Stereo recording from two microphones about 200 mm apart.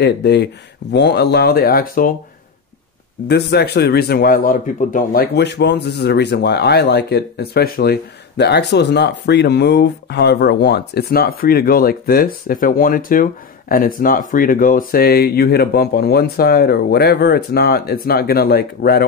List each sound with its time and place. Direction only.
0.0 s speech: 55° left (ahead or behind)
3.3 s speech: 55° left (ahead or behind)